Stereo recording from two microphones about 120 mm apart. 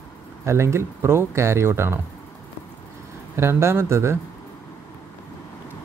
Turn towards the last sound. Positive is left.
turn(degrees=-20)  # may be behind; listen again after turning